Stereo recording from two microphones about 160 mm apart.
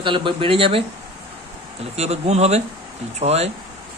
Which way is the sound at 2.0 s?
40° right (ahead or behind).